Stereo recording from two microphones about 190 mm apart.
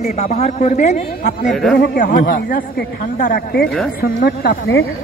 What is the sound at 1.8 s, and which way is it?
Speech, 50° left (ahead or behind).